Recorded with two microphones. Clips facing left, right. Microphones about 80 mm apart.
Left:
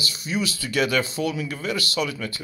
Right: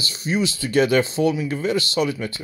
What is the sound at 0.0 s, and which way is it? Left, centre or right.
Speech, right.